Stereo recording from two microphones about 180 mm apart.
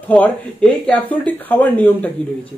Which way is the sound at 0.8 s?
10° left (ahead or behind).